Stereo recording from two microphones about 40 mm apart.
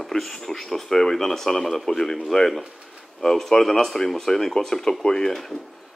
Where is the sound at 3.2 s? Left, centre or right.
Centre.